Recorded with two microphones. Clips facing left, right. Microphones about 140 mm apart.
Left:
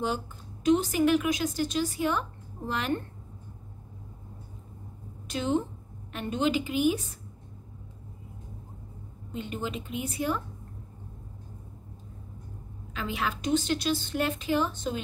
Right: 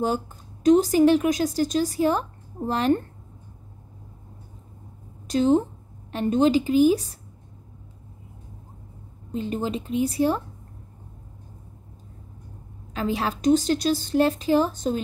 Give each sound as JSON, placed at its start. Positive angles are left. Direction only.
{"t": 0.7, "sound": "speech", "side_deg": -40}
{"t": 5.3, "sound": "speech", "side_deg": -40}
{"t": 9.3, "sound": "speech", "side_deg": -35}
{"t": 12.9, "sound": "speech", "side_deg": -35}